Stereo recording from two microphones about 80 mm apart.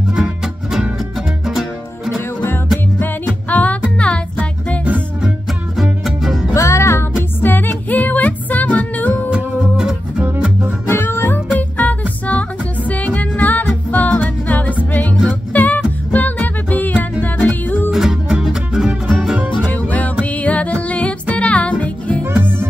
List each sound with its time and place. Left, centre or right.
0.1 s music: centre
3.0 s music: left
5.2 s music: centre
6.5 s music: left; by 9.3 s centre
9.3 s music: centre
10.9 s music: left
17.9 s music: centre
19.7 s music: centre
22.2 s music: right